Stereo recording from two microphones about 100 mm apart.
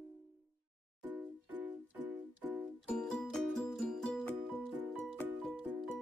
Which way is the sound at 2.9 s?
5° left (ahead or behind).